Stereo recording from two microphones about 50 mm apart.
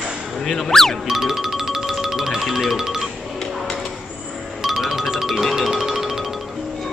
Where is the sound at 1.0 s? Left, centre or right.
Centre.